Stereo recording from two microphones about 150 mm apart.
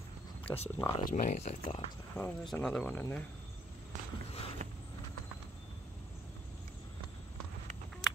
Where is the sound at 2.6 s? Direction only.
10° left (ahead or behind).